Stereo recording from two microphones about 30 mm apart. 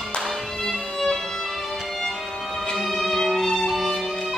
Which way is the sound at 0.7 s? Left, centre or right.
Centre.